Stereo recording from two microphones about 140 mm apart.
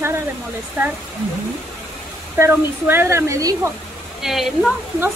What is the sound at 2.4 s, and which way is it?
Speech, 15° right (ahead or behind).